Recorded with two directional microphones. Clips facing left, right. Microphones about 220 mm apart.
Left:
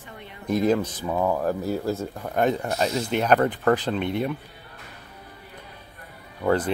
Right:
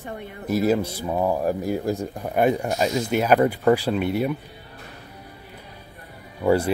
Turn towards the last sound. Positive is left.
turn(degrees=-10)  # may be behind; listen again after turning